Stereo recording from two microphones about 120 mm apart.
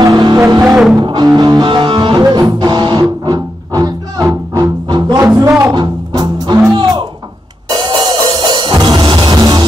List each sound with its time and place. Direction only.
0.1 s music: 35° right (ahead or behind)
0.7 s music: centre (ahead or behind)
1.0 s music: 40° right (ahead or behind)
6.7 s a sound: 40° right (ahead or behind)
7.7 s music: 35° right (ahead or behind)